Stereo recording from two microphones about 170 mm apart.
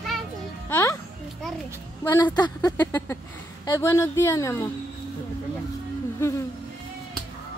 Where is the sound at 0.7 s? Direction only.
15° left (ahead or behind).